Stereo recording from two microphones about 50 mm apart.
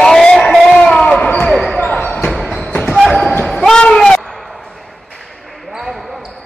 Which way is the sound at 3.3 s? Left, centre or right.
Left.